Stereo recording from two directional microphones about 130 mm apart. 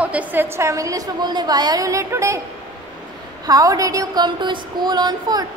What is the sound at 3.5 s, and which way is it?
A woman's voice, 25° right (ahead or behind).